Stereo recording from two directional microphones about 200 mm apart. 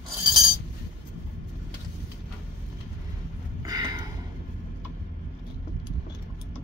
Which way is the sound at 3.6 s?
20° right (ahead or behind).